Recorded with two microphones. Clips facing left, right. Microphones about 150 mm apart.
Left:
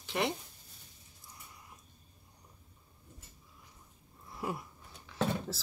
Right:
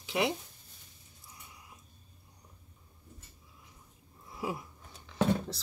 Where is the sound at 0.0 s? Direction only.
Centre (ahead or behind).